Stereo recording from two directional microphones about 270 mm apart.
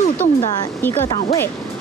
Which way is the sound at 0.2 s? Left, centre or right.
Left.